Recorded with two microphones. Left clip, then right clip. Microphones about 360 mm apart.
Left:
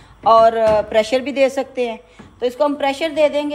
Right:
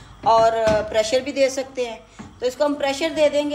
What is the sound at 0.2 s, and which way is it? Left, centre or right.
A woman's voice, left.